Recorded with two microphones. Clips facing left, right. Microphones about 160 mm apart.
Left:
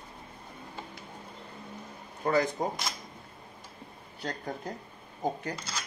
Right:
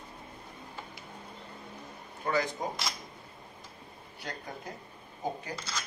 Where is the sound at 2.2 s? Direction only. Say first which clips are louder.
Left 4 dB; 35° left (ahead or behind).